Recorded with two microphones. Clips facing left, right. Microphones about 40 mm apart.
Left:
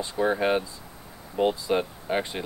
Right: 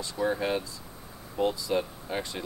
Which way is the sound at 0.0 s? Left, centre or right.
Left.